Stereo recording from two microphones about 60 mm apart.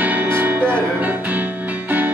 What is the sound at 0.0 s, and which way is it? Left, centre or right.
Music, right.